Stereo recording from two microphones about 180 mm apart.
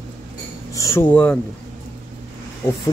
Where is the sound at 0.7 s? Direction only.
15° left (ahead or behind).